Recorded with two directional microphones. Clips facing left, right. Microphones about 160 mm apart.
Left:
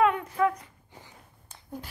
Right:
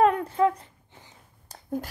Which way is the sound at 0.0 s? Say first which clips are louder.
Right 3 dB; 35° right (ahead or behind).